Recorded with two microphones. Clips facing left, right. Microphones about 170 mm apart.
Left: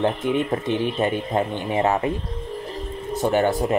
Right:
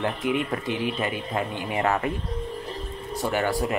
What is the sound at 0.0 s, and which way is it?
Speech, 25° left (ahead or behind).